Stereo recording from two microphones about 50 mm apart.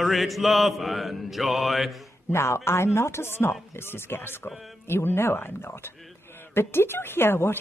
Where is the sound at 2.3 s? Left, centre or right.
Left.